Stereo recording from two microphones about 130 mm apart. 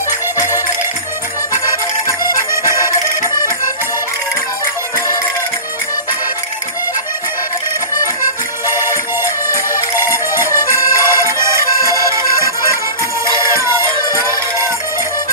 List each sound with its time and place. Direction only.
2.5 s music: 20° right (ahead or behind)
8.6 s music: 20° right (ahead or behind)
9.9 s music: 20° right (ahead or behind)